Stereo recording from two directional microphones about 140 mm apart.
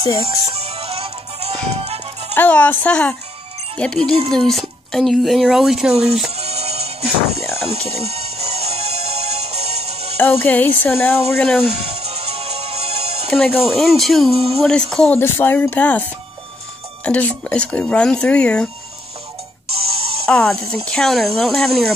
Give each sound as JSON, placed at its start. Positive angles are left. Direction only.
{"t": 0.3, "sound": "music", "side_deg": -45}
{"t": 2.3, "sound": "speech", "side_deg": 10}
{"t": 6.3, "sound": "music", "side_deg": -45}
{"t": 10.1, "sound": "speech", "side_deg": 10}
{"t": 11.5, "sound": "speech", "side_deg": 0}
{"t": 11.9, "sound": "music", "side_deg": -45}
{"t": 13.3, "sound": "speech", "side_deg": 0}
{"t": 14.3, "sound": "a sound", "side_deg": -45}
{"t": 14.6, "sound": "speech", "side_deg": 5}
{"t": 15.1, "sound": "speech", "side_deg": 15}
{"t": 19.7, "sound": "music", "side_deg": -40}
{"t": 20.2, "sound": "speech", "side_deg": 5}